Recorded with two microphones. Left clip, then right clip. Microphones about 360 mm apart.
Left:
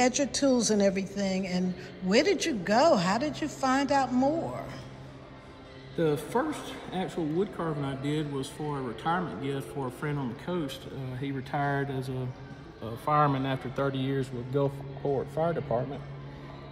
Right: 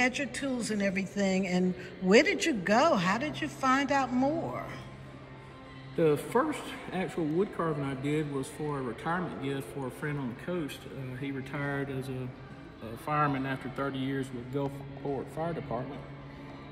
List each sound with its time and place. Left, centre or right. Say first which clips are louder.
0.0 s a woman's voice: left 4 dB; centre
5.9 s a woman's voice: right 1 dB; centre; by 11.7 s left
13.0 s speech: left 4 dB; left
15.3 s speech: left 6 dB; left